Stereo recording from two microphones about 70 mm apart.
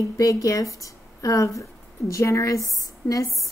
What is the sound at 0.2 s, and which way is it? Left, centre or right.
A woman's voice, left.